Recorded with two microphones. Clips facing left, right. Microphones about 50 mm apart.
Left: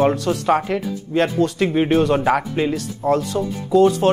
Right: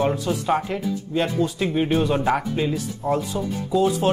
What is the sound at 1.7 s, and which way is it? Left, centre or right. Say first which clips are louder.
Speech: left 4 dB; left.